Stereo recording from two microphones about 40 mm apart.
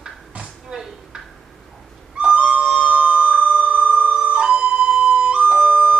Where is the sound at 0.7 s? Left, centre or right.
Centre.